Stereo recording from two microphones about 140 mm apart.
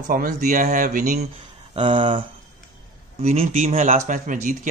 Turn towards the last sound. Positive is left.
turn(degrees=-70)  # may be behind; listen again after turning